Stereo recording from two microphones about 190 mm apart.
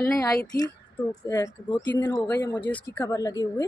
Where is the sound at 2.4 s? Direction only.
10° left (ahead or behind).